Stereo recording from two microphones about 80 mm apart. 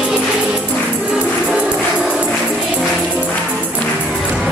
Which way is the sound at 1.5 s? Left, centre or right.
Centre.